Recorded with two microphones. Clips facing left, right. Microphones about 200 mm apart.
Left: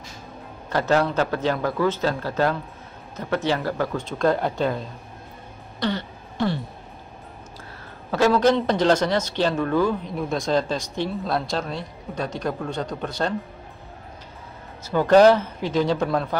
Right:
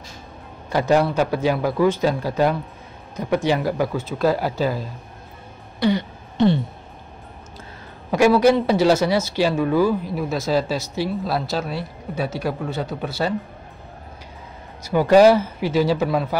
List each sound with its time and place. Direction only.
0.7 s speech: 10° right (ahead or behind)
8.1 s speech: 10° right (ahead or behind)
14.8 s speech: 10° right (ahead or behind)